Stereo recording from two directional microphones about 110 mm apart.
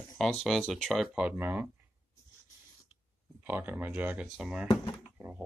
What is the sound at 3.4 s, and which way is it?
Speech, 15° right (ahead or behind).